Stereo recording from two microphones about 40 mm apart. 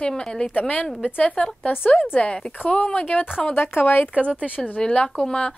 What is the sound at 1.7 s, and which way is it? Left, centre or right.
Speech, left.